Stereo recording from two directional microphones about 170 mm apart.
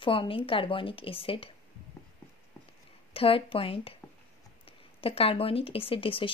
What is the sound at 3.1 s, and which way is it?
Speech, 35° left (ahead or behind).